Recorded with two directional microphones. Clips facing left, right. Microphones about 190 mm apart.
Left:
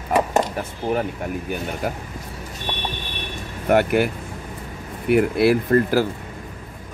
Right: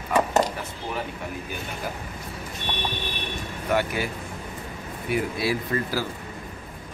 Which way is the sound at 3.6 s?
60° left (ahead or behind).